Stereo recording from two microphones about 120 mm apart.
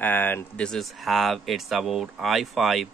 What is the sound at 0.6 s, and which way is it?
Speech, centre (ahead or behind).